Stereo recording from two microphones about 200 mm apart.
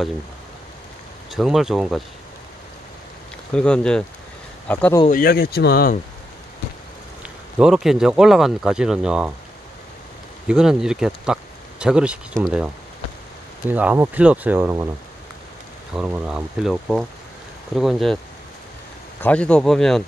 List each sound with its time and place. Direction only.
1.3 s speech: centre (ahead or behind)
3.5 s speech: 5° left (ahead or behind)
5.0 s speech: 45° left (ahead or behind)
7.5 s speech: 5° right (ahead or behind)
10.5 s speech: 5° right (ahead or behind)
13.7 s speech: 10° right (ahead or behind)
16.0 s speech: 5° right (ahead or behind)
19.2 s speech: 5° left (ahead or behind)